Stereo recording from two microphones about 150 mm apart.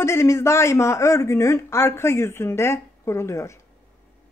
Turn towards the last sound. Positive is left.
turn(degrees=20)  # may be behind; listen again after turning